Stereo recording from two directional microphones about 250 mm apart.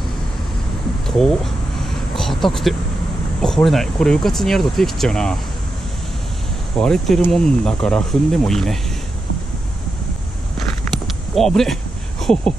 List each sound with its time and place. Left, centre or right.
1.0 s speech: centre
6.8 s speech: centre
10.9 s a sound: centre